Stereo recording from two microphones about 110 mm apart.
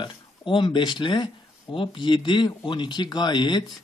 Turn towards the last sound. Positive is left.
turn(degrees=40)  # may be behind; listen again after turning